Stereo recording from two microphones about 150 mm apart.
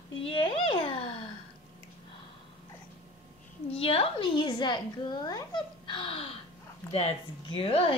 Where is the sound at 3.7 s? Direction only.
40° left (ahead or behind).